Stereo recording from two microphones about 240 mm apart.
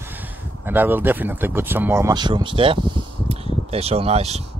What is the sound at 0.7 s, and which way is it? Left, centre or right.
Speech, centre.